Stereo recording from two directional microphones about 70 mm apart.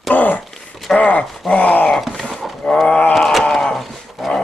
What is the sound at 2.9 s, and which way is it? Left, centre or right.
Wail, centre.